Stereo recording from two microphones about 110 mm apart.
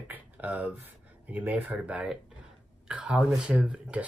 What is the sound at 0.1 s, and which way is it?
Speech, 15° right (ahead or behind).